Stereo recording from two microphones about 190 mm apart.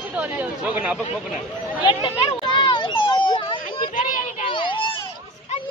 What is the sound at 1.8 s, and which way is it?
Children playing, 25° left (ahead or behind).